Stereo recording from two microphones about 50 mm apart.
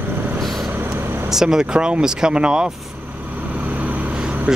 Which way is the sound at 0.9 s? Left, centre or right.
Right.